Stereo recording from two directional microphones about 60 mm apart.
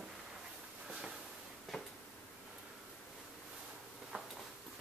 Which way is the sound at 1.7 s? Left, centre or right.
Centre.